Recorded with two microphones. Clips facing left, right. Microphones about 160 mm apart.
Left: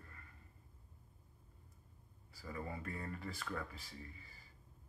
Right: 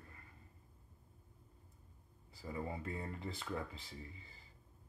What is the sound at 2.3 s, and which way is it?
Speech, 20° right (ahead or behind).